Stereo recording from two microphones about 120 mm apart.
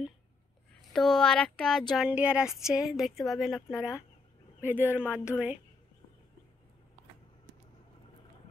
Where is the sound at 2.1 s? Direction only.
10° right (ahead or behind).